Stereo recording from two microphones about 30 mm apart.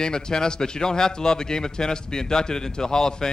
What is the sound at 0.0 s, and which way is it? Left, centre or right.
A man's voice, left.